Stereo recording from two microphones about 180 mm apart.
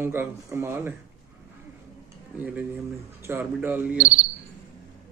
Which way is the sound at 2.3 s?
10° right (ahead or behind).